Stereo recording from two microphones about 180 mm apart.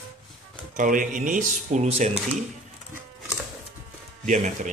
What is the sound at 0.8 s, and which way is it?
Speech, 50° right (ahead or behind).